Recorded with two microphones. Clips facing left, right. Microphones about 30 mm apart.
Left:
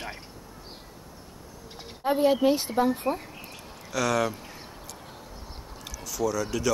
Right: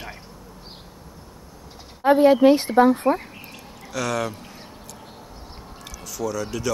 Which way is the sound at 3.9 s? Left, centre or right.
Centre.